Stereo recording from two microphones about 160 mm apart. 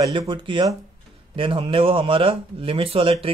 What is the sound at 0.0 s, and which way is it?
Speech, 25° right (ahead or behind).